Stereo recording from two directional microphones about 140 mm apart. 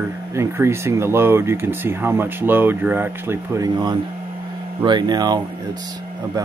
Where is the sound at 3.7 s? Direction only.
30° right (ahead or behind).